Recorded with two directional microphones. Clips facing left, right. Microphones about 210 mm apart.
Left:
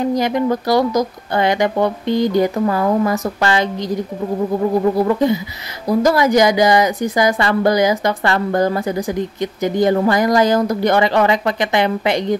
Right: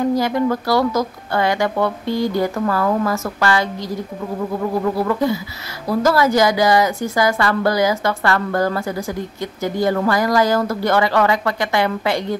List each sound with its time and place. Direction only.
0.0 s a woman's voice: 20° left (ahead or behind)